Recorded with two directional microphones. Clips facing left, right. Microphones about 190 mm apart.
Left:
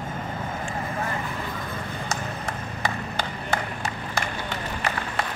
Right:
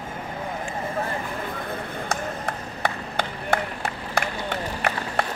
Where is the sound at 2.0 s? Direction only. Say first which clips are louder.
Right 3 dB; 60° right (ahead or behind).